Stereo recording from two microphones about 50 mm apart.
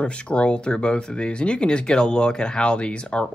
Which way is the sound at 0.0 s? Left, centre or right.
Left.